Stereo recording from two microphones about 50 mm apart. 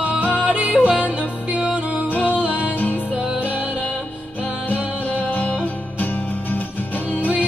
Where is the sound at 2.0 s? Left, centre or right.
Left.